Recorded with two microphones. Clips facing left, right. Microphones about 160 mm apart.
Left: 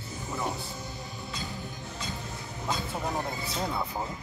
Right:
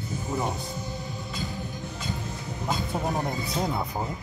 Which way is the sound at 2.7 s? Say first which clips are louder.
Right 3 dB; 20° right (ahead or behind).